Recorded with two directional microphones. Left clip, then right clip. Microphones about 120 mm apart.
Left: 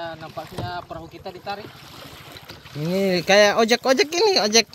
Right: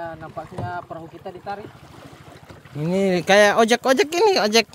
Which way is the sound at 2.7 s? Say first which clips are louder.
Right 1 dB; 5° right (ahead or behind).